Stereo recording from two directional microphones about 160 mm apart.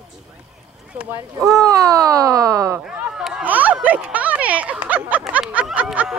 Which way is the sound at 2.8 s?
5° right (ahead or behind).